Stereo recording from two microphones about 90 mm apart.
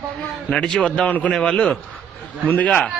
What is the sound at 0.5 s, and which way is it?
A man's voice, 10° left (ahead or behind).